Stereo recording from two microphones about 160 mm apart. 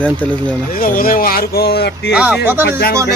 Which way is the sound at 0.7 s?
65° left (ahead or behind).